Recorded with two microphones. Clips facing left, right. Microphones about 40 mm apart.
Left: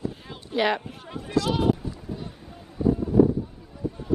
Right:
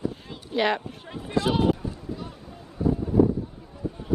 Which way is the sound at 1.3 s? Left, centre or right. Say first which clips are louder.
Even; right.